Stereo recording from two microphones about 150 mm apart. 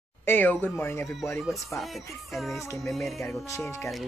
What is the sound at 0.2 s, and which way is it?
Speech, 15° left (ahead or behind).